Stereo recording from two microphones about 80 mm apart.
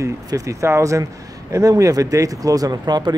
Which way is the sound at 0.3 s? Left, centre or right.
Right.